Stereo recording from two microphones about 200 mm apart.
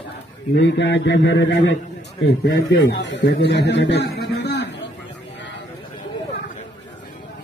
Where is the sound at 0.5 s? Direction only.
60° left (ahead or behind).